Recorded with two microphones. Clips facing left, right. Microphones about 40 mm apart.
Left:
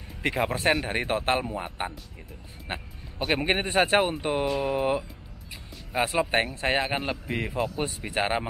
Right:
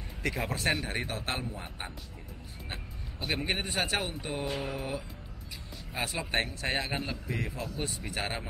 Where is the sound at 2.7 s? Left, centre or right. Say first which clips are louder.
Left 8 dB; left.